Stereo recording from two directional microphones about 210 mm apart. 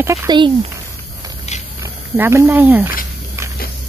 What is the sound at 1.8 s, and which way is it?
Speech, 10° right (ahead or behind).